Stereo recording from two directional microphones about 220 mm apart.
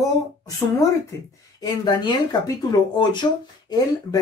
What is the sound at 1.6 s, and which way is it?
Speech, 20° left (ahead or behind).